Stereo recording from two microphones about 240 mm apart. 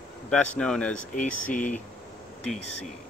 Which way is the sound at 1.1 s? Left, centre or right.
Left.